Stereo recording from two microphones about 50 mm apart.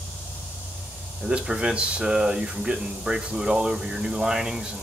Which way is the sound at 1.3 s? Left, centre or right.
Centre.